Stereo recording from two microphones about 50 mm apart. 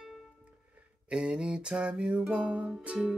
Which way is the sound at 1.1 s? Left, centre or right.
Centre.